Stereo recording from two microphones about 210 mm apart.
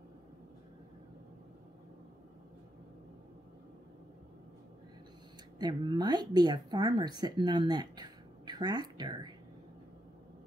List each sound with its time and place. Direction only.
5.6 s speech: 20° right (ahead or behind)